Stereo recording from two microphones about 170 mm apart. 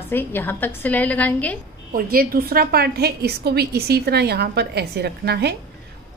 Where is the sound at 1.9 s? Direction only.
60° right (ahead or behind).